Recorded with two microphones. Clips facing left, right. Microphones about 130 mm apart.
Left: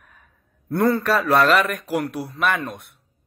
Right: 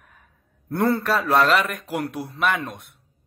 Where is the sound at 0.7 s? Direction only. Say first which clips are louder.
Left 2 dB; 30° right (ahead or behind).